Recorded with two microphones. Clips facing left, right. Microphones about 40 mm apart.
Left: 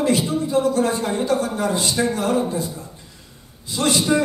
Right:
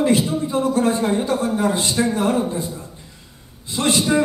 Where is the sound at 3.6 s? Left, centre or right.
Right.